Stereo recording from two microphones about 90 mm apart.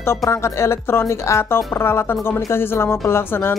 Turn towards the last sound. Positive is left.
turn(degrees=25)  # may be behind; listen again after turning